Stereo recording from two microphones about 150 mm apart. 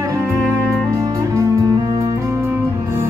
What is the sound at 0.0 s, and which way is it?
Music, 20° right (ahead or behind).